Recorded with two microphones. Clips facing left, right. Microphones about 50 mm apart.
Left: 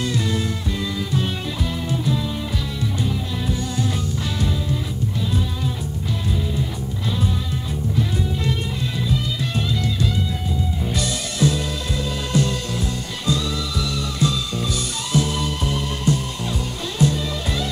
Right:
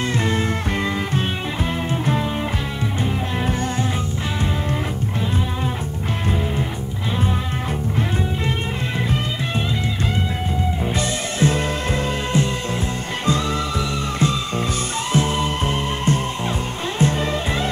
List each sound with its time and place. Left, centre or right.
0.1 s music: right
11.0 s music: right